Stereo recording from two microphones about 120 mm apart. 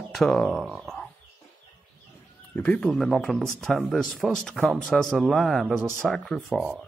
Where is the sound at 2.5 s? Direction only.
15° left (ahead or behind).